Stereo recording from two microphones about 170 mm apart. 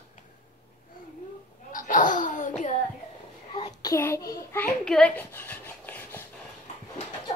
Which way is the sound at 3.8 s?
20° left (ahead or behind).